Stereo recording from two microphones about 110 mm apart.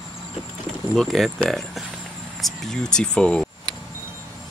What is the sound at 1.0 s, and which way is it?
Speech, centre (ahead or behind).